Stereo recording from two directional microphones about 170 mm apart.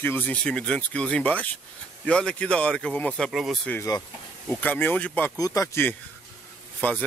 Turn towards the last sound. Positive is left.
turn(degrees=10)  # may be behind; listen again after turning